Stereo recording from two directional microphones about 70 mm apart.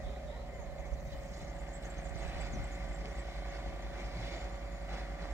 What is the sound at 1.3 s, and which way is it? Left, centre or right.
Vehicle, right.